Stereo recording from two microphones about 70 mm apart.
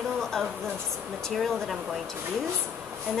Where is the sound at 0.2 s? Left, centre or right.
Centre.